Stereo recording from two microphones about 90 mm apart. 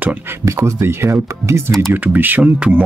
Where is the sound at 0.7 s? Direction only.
30° right (ahead or behind).